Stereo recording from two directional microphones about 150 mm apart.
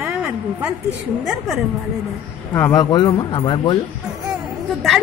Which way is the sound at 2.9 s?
30° left (ahead or behind).